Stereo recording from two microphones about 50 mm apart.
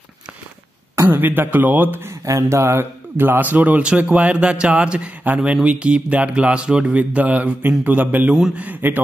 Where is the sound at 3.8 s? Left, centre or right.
Right.